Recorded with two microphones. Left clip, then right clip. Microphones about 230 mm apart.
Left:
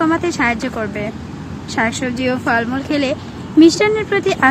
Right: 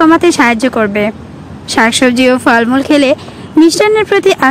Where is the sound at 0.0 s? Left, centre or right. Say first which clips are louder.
Right 9 dB; right.